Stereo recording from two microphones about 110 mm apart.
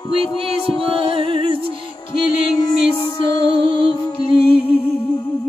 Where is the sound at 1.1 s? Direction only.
55° right (ahead or behind).